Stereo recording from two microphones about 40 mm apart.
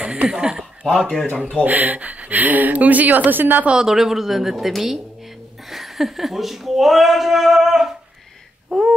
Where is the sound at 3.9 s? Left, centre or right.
Centre.